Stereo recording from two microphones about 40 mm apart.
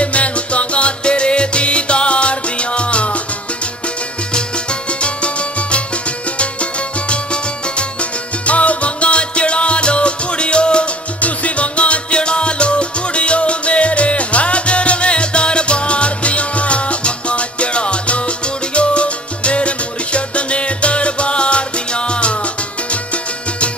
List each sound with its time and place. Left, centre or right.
0.0 s music: left
4.3 s music: left
11.1 s music: left
18.8 s salsa music: left